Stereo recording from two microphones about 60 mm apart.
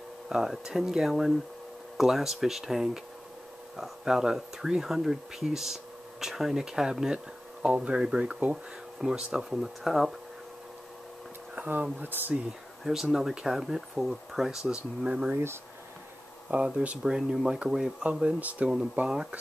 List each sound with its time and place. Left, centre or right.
0.3 s speech: centre
11.5 s speech: right
12.8 s speech: centre
15.3 s speech: right
16.4 s speech: centre
18.2 s speech: right